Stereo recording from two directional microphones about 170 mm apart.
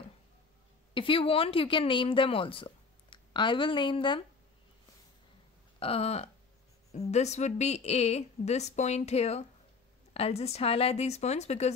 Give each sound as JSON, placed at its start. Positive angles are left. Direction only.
{"t": 0.9, "sound": "speech", "side_deg": 30}
{"t": 5.8, "sound": "speech", "side_deg": 35}